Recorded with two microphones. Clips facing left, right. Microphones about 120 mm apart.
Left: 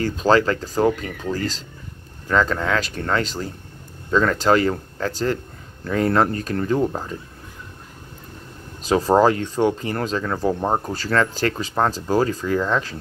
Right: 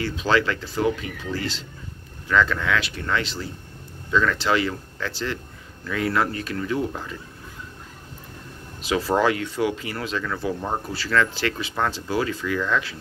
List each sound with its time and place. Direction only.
0.0 s speech: 45° left (ahead or behind)
8.8 s speech: 40° left (ahead or behind)